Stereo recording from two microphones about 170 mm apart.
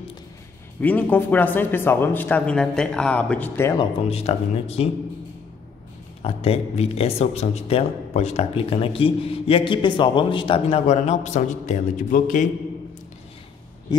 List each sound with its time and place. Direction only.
0.7 s speech: 10° left (ahead or behind)
3.7 s a man's voice: 40° left (ahead or behind)
6.2 s a man's voice: 35° left (ahead or behind)
11.0 s a man's voice: 45° left (ahead or behind)